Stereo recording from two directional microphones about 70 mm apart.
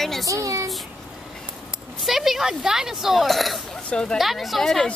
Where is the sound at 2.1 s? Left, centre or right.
Centre.